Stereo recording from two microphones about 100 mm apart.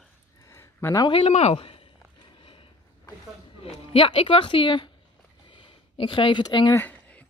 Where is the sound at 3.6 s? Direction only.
70° left (ahead or behind); by 4.9 s 55° left (ahead or behind).